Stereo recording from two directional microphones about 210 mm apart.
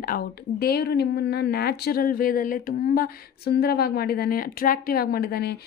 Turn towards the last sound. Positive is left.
turn(degrees=45)  # may be behind; listen again after turning